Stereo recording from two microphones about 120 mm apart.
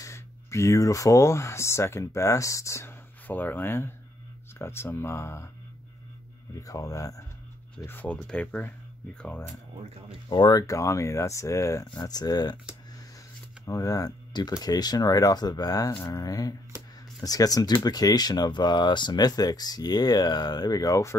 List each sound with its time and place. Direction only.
0.0 s speech: 25° left (ahead or behind)
6.5 s speech: 30° left (ahead or behind)
7.8 s speech: 15° left (ahead or behind)
10.3 s speech: 40° left (ahead or behind)
10.7 s speech: 25° left (ahead or behind)
13.7 s speech: 30° left (ahead or behind)